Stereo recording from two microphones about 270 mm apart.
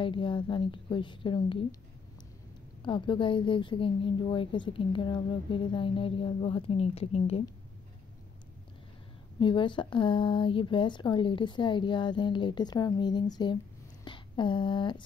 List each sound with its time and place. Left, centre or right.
0.0 s speech: centre
2.8 s a woman's voice: centre
9.4 s speech: centre